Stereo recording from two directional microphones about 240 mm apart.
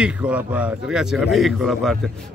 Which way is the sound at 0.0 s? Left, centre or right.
Centre.